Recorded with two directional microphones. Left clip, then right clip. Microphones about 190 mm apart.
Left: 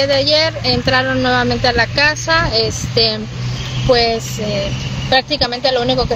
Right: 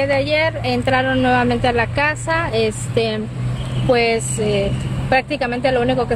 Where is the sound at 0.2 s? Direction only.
30° right (ahead or behind).